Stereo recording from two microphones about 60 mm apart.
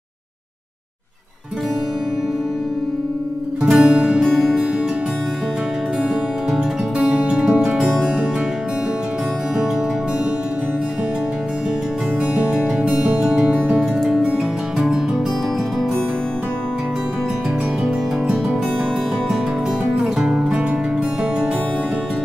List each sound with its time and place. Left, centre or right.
3.6 s music: centre
4.3 s music: centre
6.5 s music: centre
7.7 s music: centre
12.4 s music: centre
13.5 s music: right
13.9 s music: centre
14.2 s music: centre
17.8 s music: centre
20.0 s music: centre